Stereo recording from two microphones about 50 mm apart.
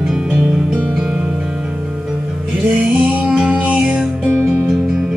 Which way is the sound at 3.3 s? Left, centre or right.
Centre.